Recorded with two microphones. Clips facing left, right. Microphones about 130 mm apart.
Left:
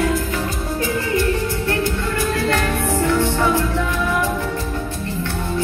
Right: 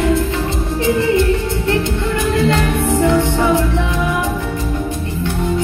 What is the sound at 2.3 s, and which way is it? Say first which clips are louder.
Music: right 6 dB; 20° right (ahead or behind).